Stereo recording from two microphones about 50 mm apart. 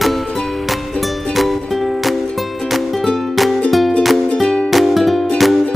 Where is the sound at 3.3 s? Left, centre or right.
Centre.